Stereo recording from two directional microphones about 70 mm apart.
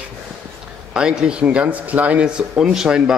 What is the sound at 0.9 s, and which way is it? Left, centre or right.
Speech, centre.